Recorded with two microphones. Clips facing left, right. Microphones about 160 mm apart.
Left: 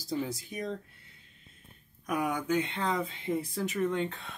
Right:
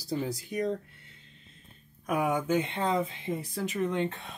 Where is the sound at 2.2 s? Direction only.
20° right (ahead or behind).